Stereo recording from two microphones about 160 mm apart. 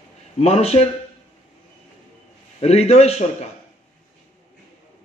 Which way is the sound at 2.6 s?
40° left (ahead or behind).